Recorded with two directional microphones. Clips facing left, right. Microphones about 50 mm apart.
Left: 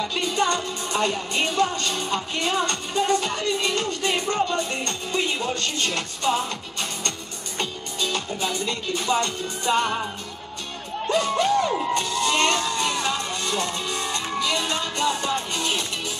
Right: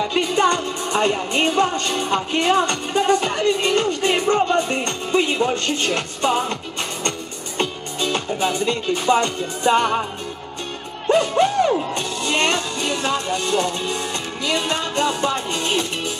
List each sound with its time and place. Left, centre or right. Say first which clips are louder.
0.1 s music: right 6 dB; right
11.1 s music: right 5 dB; right
11.9 s speech: even; right